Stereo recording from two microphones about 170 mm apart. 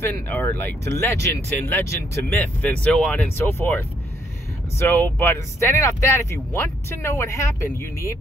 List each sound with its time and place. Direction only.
0.0 s speech: 10° left (ahead or behind)